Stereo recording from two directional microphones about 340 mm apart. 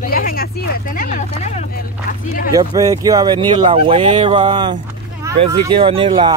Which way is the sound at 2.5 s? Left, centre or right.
Centre.